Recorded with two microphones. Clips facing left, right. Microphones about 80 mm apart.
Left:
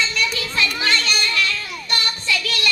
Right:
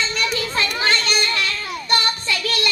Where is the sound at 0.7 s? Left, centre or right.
Right.